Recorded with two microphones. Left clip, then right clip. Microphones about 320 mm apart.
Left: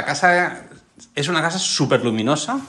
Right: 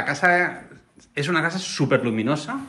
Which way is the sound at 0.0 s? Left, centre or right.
Centre.